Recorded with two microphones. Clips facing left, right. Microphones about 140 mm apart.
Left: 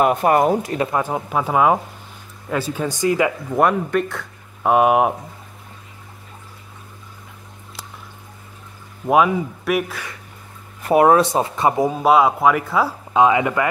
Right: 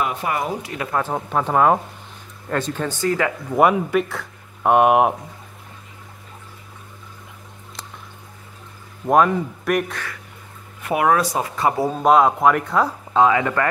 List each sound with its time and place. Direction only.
0.0 s speech: 50° left (ahead or behind)
0.9 s speech: 10° left (ahead or behind)
3.5 s speech: 5° right (ahead or behind)
9.0 s speech: 5° left (ahead or behind)
10.8 s speech: 35° left (ahead or behind)
11.9 s speech: 5° left (ahead or behind)
13.2 s speech: 15° left (ahead or behind)